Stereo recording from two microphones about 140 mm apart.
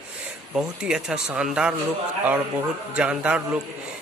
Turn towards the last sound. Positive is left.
turn(degrees=-10)  # may be behind; listen again after turning